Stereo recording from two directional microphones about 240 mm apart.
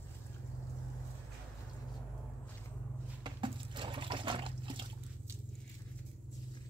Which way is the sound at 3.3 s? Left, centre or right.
Right.